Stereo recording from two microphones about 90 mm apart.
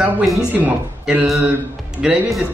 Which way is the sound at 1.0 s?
15° right (ahead or behind).